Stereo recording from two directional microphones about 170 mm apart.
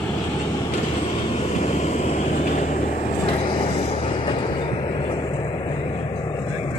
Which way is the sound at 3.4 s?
30° left (ahead or behind).